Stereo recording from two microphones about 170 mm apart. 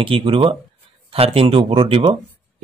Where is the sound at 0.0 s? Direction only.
30° right (ahead or behind).